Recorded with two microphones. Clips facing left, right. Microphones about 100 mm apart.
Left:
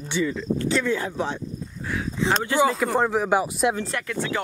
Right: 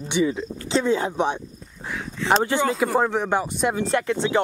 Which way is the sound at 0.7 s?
25° right (ahead or behind).